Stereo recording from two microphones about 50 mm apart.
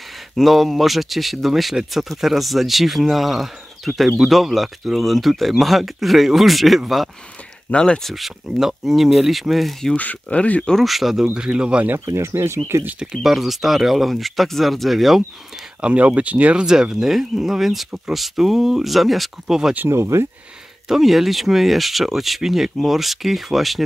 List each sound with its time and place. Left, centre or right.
0.4 s speech: centre
7.7 s speech: centre
8.0 s speech: centre
9.9 s speech: left
10.7 s speech: centre
11.3 s speech: centre
12.1 s speech: right
13.1 s speech: centre
15.8 s speech: right
16.6 s speech: centre
19.9 s speech: right
20.9 s speech: centre